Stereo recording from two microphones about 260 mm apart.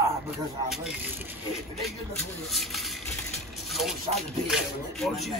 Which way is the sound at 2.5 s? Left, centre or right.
Centre.